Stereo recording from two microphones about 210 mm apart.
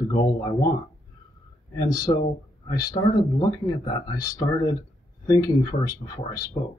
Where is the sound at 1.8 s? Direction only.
20° left (ahead or behind).